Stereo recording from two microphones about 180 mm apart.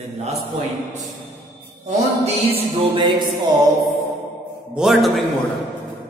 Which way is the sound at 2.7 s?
25° right (ahead or behind).